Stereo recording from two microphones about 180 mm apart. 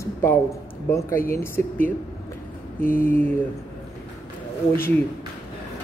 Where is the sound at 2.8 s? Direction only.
50° left (ahead or behind).